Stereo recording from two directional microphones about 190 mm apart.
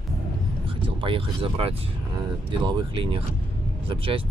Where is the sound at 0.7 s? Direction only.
30° right (ahead or behind).